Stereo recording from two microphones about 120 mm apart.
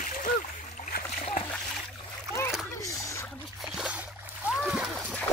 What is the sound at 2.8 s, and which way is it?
Splash, 25° left (ahead or behind).